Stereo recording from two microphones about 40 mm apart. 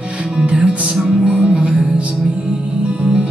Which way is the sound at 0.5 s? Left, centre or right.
Centre.